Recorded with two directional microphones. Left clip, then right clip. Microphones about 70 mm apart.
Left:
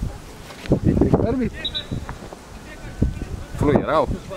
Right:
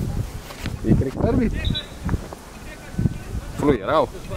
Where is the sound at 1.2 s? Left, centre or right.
Right.